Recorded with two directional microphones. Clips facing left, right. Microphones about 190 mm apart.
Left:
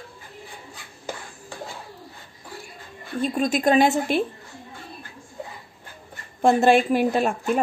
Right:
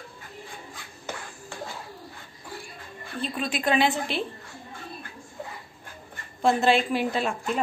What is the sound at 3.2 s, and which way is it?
Speech, 45° left (ahead or behind).